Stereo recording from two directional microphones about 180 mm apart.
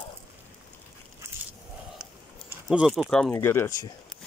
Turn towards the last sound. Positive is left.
turn(degrees=15)  # may be behind; listen again after turning